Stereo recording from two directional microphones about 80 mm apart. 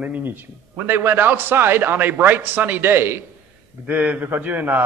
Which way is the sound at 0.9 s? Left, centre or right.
Right.